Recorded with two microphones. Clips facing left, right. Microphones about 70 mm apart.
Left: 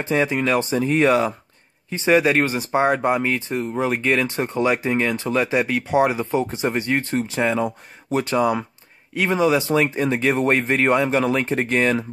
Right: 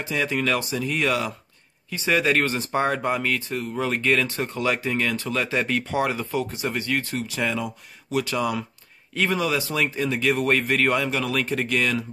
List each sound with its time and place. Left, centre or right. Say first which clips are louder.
0.0 s speech: left 6 dB; left
0.3 s speech: left 4 dB; left
0.7 s speech: left 7 dB; left
9.1 s speech: left 5 dB; centre